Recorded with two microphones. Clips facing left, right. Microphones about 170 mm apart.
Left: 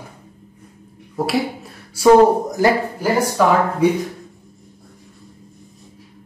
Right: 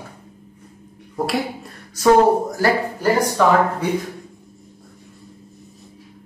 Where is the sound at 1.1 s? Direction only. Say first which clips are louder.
Left 2 dB; centre (ahead or behind).